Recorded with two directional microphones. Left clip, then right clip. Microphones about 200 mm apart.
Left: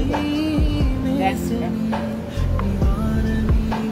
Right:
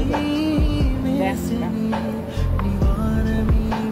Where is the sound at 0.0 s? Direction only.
Centre (ahead or behind).